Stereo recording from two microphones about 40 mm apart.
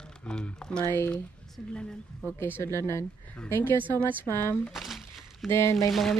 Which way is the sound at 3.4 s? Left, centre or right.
Left.